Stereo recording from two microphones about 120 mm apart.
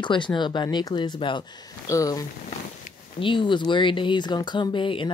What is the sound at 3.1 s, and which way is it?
Speech, 45° left (ahead or behind).